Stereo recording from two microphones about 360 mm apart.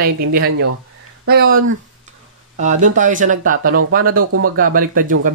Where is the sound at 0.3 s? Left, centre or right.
Right.